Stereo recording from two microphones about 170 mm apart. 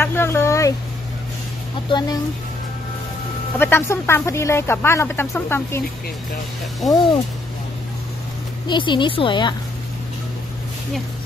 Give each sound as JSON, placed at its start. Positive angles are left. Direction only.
{"t": 0.0, "sound": "a sound", "side_deg": 15}
{"t": 1.9, "sound": "a woman's voice", "side_deg": 25}
{"t": 3.5, "sound": "speech", "side_deg": 10}
{"t": 6.8, "sound": "speech", "side_deg": 0}
{"t": 8.6, "sound": "a woman's voice", "side_deg": 25}